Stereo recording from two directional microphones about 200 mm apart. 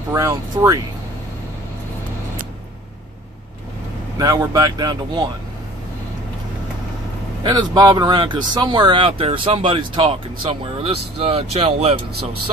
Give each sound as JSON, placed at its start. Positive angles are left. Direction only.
{"t": 0.1, "sound": "speech", "side_deg": -15}
{"t": 4.2, "sound": "speech", "side_deg": -20}
{"t": 7.4, "sound": "speech", "side_deg": -20}